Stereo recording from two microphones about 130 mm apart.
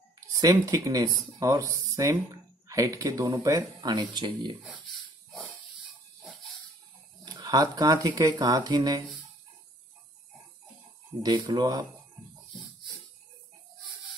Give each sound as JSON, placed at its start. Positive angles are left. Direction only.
{"t": 0.4, "sound": "speech", "side_deg": -25}
{"t": 7.2, "sound": "speech", "side_deg": -30}
{"t": 11.2, "sound": "speech", "side_deg": -30}